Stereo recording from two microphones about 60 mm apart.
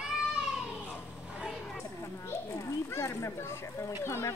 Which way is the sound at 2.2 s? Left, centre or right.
Left.